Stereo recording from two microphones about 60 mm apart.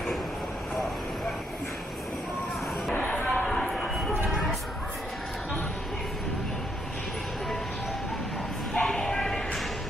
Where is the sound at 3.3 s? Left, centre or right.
Centre.